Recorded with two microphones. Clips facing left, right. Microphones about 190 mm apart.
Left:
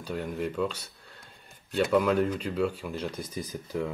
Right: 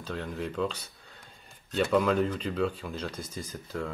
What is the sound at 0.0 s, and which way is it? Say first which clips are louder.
Speech: left 3 dB; 10° left (ahead or behind).